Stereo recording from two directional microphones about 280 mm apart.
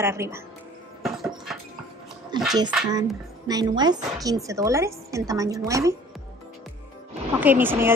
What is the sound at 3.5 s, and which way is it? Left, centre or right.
A woman's voice, centre.